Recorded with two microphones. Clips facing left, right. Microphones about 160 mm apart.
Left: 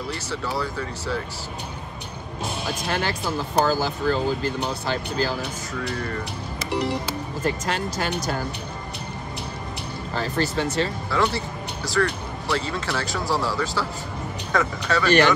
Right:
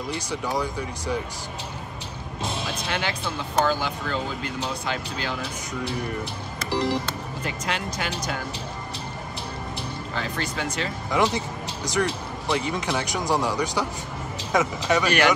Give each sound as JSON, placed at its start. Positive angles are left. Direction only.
{"t": 0.3, "sound": "speech", "side_deg": -15}
{"t": 2.9, "sound": "speech", "side_deg": 40}
{"t": 5.9, "sound": "speech", "side_deg": -15}
{"t": 6.7, "sound": "music", "side_deg": 0}
{"t": 7.4, "sound": "speech", "side_deg": 40}
{"t": 10.1, "sound": "speech", "side_deg": 35}
{"t": 11.3, "sound": "vehicle", "side_deg": -20}
{"t": 12.1, "sound": "speech", "side_deg": -20}